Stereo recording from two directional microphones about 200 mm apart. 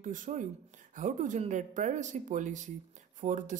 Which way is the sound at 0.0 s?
40° right (ahead or behind).